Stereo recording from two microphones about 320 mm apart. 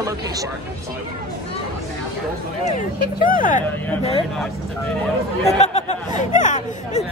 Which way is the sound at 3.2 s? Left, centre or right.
Left.